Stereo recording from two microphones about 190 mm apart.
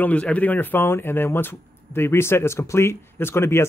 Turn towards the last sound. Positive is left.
turn(degrees=15)  # may be behind; listen again after turning